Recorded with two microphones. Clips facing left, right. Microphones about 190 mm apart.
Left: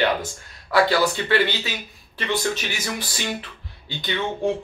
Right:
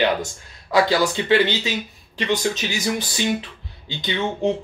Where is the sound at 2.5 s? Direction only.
20° right (ahead or behind).